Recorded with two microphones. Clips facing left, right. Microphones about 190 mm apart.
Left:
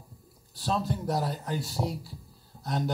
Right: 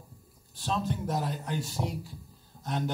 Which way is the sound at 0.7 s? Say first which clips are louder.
Left 1 dB; 40° left (ahead or behind).